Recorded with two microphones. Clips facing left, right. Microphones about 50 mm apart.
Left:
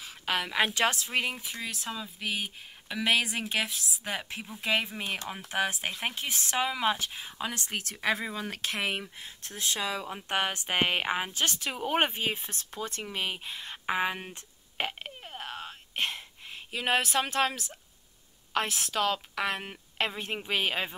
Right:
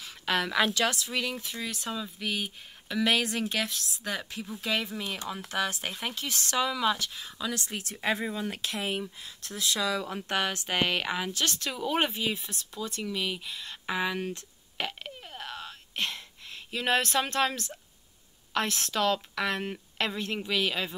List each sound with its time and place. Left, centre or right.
0.0 s a sound: centre
0.7 s speech: left
1.6 s speech: centre
4.1 s speech: left
5.5 s speech: centre; by 9.3 s left
9.4 s speech: left
10.1 s speech: left
11.8 s speech: left
15.2 s a sound: centre
18.5 s speech: centre
20.4 s speech: left